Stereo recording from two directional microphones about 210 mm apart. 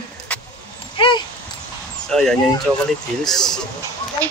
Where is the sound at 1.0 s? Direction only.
25° left (ahead or behind).